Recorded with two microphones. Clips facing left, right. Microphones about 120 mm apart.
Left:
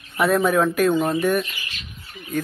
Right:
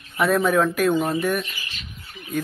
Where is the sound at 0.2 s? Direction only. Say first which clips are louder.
Left 1 dB; centre (ahead or behind).